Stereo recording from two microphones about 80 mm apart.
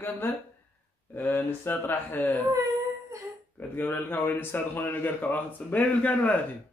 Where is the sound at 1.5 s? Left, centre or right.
Left.